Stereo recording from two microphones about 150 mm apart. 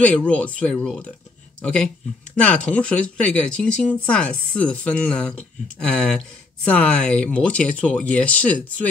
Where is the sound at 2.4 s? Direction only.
5° left (ahead or behind).